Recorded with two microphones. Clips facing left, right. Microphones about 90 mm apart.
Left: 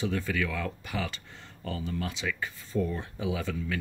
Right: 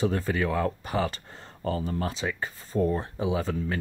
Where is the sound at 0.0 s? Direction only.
40° right (ahead or behind).